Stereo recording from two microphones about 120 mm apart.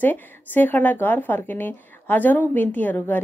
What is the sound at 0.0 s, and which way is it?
A woman's voice, 15° left (ahead or behind).